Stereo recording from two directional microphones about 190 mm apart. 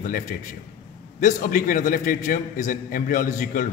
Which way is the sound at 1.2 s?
45° left (ahead or behind).